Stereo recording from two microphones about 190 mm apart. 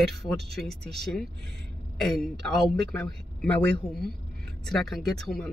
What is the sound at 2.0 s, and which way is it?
Speech, centre (ahead or behind).